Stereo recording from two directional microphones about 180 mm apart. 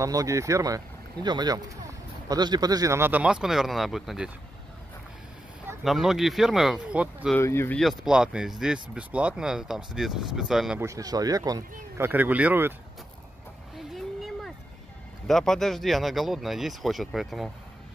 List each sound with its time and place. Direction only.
0.0 s speech: 20° right (ahead or behind); by 4.3 s centre (ahead or behind)
5.9 s speech: centre (ahead or behind)
7.3 s speech: 15° left (ahead or behind)
7.8 s speech: centre (ahead or behind)
10.8 s speech: 20° right (ahead or behind)
12.0 s speech: 10° right (ahead or behind)
13.9 s a sound: centre (ahead or behind)
15.2 s speech: centre (ahead or behind)